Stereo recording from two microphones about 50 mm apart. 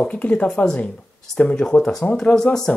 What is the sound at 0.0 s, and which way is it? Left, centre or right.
Speech, left.